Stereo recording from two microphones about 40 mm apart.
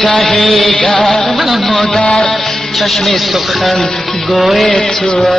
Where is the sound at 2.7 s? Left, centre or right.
Centre.